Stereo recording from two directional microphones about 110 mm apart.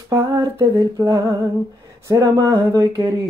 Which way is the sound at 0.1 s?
30° right (ahead or behind).